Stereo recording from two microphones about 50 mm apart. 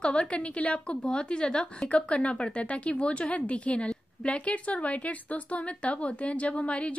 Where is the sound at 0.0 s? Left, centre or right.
Left.